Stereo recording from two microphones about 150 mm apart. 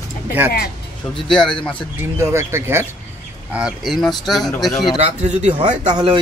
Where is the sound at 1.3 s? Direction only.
5° left (ahead or behind).